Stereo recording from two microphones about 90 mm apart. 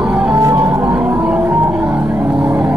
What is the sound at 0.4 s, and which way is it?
Music, 40° right (ahead or behind).